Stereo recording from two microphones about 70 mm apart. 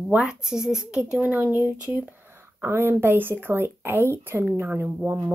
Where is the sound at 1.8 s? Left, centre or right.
Centre.